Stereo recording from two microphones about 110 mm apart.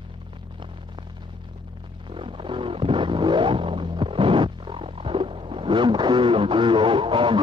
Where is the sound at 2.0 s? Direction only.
55° right (ahead or behind).